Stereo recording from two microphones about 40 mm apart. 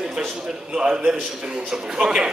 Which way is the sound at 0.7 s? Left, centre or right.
Right.